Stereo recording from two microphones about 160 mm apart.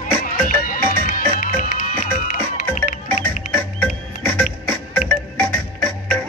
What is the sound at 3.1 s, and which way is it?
Music, 10° left (ahead or behind).